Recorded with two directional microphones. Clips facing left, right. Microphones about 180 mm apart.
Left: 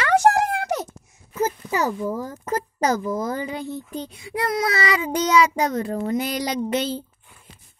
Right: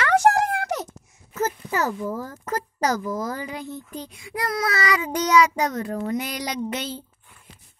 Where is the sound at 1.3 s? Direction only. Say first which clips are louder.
Left 2 dB; 15° left (ahead or behind); by 7.0 s 30° left (ahead or behind).